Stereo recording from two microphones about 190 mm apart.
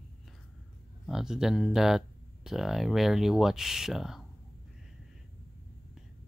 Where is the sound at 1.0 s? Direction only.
Centre (ahead or behind).